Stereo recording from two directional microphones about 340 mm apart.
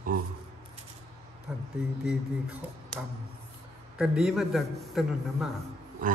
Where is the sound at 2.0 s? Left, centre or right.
Centre.